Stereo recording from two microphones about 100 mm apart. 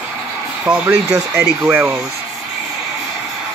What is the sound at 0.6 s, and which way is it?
Speech, 15° right (ahead or behind).